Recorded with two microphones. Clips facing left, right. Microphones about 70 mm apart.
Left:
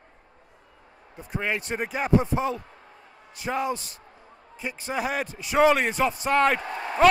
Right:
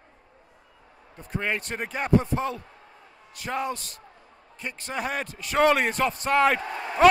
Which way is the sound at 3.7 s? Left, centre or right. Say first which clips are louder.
Left 3 dB; centre.